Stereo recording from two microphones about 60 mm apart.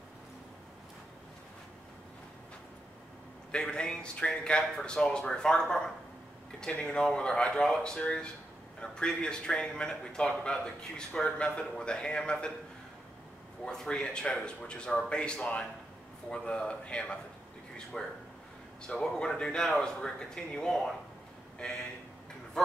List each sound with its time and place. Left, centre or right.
3.5 s a man's voice: centre
13.7 s a man's voice: centre
17.9 s a man's voice: centre